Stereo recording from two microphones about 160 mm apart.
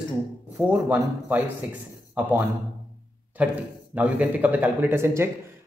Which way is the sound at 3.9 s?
10° right (ahead or behind).